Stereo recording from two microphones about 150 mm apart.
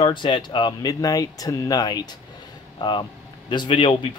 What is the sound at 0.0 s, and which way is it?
Speech, 35° left (ahead or behind).